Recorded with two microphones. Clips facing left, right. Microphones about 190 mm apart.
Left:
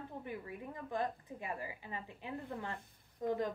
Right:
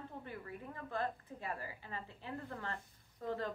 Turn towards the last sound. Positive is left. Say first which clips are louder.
# left 4 dB
turn(degrees=15)  # may be behind; listen again after turning